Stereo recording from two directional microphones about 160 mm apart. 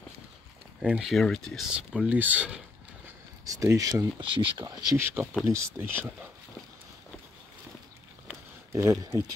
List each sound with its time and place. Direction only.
0.8 s speech: 5° right (ahead or behind)
2.0 s speech: 10° right (ahead or behind)
3.4 s speech: 20° right (ahead or behind)
4.2 s speech: 30° right (ahead or behind); by 6.1 s 10° right (ahead or behind)
8.7 s speech: 20° right (ahead or behind)